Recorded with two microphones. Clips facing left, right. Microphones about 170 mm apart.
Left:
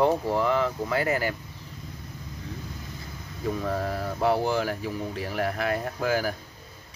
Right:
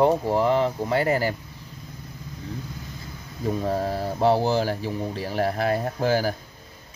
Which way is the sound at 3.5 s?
30° right (ahead or behind).